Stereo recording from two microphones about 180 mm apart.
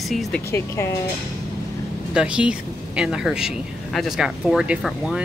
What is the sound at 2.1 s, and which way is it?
Speech, 5° right (ahead or behind).